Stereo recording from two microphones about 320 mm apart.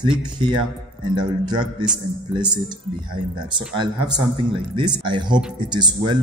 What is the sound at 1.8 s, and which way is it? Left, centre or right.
Speech, centre.